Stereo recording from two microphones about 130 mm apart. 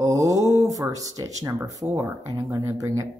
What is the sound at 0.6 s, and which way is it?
Speech, 25° right (ahead or behind).